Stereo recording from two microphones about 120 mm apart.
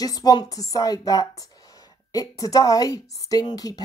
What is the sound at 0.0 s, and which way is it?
A woman's voice, 30° left (ahead or behind).